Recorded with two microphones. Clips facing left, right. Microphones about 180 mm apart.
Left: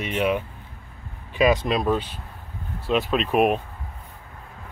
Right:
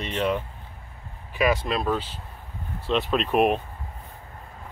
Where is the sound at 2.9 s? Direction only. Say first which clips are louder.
Left 1 dB; 5° left (ahead or behind).